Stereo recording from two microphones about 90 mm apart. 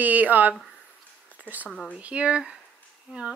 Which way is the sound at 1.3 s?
20° right (ahead or behind).